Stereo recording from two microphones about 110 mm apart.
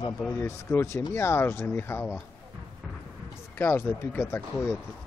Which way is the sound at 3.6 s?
20° left (ahead or behind).